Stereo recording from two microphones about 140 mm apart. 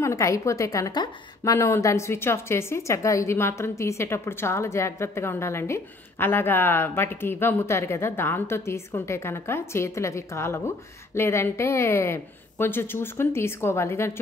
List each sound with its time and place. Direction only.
0.0 s a woman's voice: 20° left (ahead or behind)